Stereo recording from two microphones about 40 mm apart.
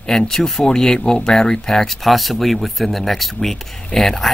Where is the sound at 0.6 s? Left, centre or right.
Centre.